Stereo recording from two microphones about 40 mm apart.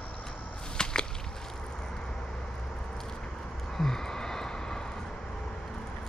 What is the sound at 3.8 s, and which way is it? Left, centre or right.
Vehicle, centre.